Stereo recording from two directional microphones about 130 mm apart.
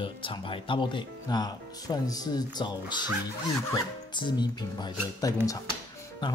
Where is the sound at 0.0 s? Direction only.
40° left (ahead or behind).